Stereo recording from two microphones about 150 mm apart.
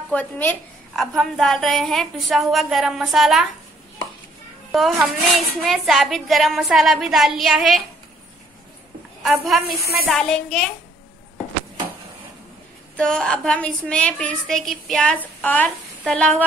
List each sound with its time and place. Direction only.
0.1 s a woman's voice: 15° left (ahead or behind)
0.9 s a woman's voice: centre (ahead or behind)
4.7 s a woman's voice: centre (ahead or behind)
10.0 s a woman's voice: 5° left (ahead or behind)
12.9 s a woman's voice: 5° left (ahead or behind)